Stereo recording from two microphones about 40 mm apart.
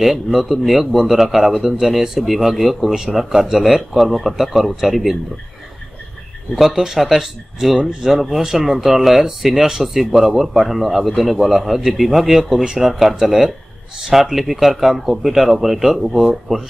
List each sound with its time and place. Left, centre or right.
0.0 s a man's voice: centre
6.5 s a man's voice: centre